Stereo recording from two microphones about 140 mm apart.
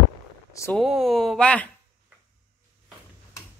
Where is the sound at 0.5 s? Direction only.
20° left (ahead or behind).